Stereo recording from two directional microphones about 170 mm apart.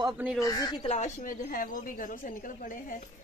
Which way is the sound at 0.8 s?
45° left (ahead or behind).